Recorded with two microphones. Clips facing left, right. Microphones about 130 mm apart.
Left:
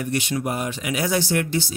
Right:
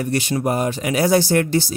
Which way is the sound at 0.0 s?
40° right (ahead or behind).